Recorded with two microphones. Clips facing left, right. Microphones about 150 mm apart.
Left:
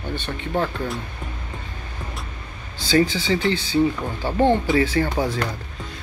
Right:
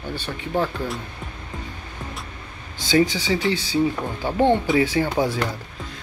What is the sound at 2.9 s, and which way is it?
Speech, 15° right (ahead or behind).